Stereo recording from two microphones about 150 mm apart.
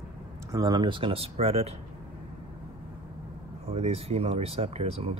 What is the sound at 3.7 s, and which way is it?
Speech, 40° right (ahead or behind).